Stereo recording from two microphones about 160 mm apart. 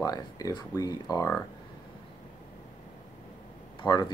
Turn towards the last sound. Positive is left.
turn(degrees=25)  # may be behind; listen again after turning